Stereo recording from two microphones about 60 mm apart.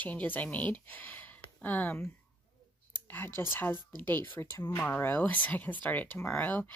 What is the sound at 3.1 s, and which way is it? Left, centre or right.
Speech, left.